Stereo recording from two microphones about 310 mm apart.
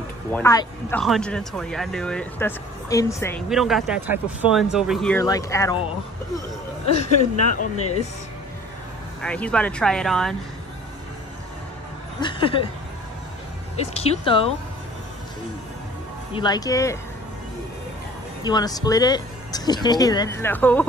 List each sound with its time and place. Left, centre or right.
0.3 s speech: centre
7.5 s speech: left
9.2 s speech: centre
12.2 s speech: centre
13.9 s speech: centre
16.3 s speech: centre
18.4 s speech: centre